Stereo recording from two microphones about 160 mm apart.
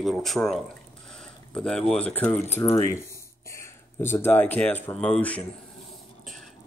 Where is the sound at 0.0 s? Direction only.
Centre (ahead or behind).